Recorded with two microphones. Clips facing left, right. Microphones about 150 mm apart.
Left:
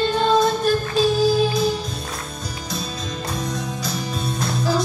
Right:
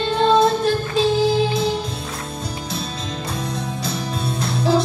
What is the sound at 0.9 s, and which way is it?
Music, 25° right (ahead or behind).